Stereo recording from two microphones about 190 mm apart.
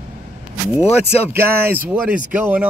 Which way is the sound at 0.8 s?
30° left (ahead or behind).